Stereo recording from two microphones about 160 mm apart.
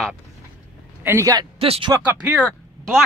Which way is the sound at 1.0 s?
20° right (ahead or behind).